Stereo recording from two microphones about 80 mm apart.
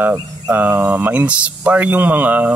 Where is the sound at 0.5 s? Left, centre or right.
Centre.